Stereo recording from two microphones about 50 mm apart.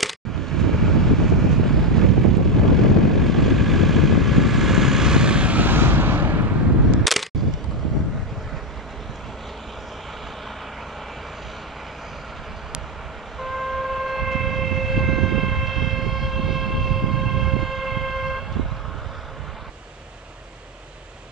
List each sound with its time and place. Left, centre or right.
0.0 s a sound: centre; by 5.6 s right
5.6 s vehicle: right
7.1 s single-lens reflex camera: centre
13.4 s train: centre